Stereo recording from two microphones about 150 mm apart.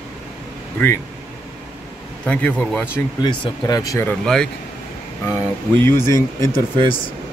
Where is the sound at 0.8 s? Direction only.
10° left (ahead or behind).